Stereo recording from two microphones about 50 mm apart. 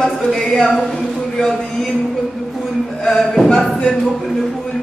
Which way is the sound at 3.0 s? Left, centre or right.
Centre.